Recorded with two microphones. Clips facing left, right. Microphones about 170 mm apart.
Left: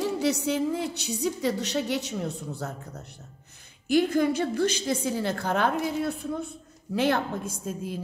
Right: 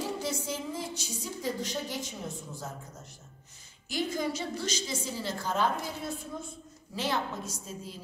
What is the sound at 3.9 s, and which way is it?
A woman's voice, 60° left (ahead or behind).